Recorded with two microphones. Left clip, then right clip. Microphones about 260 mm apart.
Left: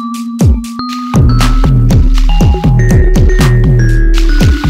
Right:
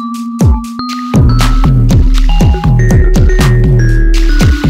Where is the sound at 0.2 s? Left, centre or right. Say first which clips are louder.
Even; centre.